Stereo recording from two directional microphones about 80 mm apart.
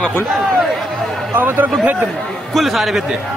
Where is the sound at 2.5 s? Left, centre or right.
Centre.